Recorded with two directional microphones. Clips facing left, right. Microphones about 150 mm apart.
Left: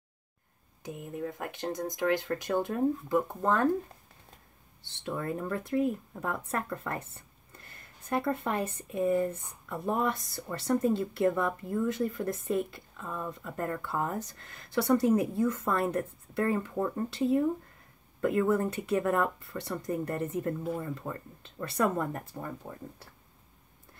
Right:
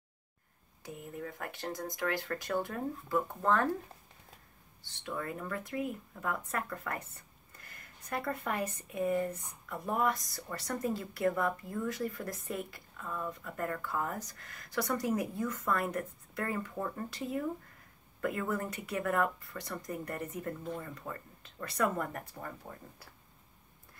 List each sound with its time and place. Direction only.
0.8 s speech: 20° left (ahead or behind)
4.9 s speech: 30° left (ahead or behind)